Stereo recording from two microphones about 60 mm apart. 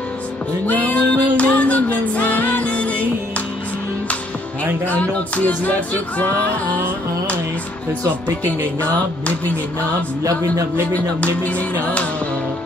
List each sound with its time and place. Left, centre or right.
0.7 s music: left
4.8 s music: left
10.9 s music: left